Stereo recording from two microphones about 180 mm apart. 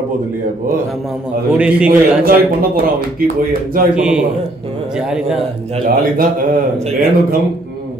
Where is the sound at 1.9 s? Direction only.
55° right (ahead or behind).